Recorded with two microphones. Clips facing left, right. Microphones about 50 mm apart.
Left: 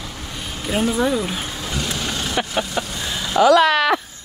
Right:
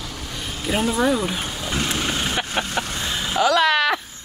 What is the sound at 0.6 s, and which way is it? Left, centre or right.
Speech, centre.